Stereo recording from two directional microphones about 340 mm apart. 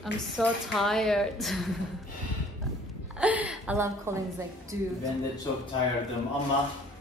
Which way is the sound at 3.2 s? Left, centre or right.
Centre.